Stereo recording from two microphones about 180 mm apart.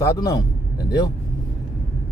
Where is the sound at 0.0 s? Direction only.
20° left (ahead or behind).